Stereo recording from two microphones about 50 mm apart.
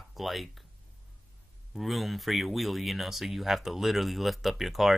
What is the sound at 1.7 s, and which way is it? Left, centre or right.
Speech, centre.